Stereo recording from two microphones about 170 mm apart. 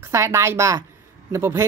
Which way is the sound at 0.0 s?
15° right (ahead or behind).